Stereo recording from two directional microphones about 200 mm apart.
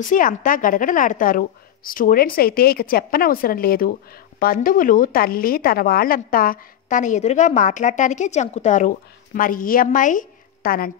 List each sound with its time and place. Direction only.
0.1 s a woman's voice: 40° left (ahead or behind)